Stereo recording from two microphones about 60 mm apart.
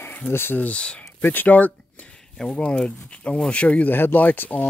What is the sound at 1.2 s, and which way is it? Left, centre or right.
Speech, left.